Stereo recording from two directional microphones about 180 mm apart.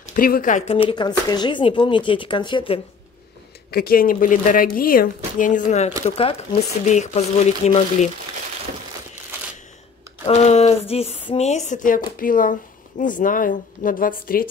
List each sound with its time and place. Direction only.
0.0 s speech: 50° left (ahead or behind)
0.7 s speech: 30° left (ahead or behind)
3.7 s speech: 55° left (ahead or behind)
5.7 s speech: 35° left (ahead or behind)
10.2 s speech: 40° left (ahead or behind)